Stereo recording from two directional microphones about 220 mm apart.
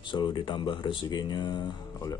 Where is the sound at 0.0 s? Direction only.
20° left (ahead or behind).